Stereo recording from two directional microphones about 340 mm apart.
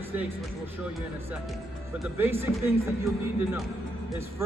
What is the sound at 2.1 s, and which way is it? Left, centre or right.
Speech, centre.